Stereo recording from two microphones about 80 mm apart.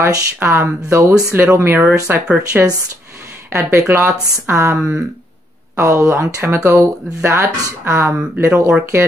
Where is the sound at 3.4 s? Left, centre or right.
Right.